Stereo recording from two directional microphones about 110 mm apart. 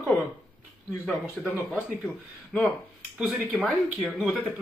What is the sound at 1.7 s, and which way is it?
Speech, 10° left (ahead or behind).